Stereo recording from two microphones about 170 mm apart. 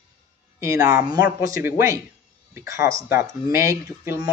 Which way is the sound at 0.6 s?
20° right (ahead or behind).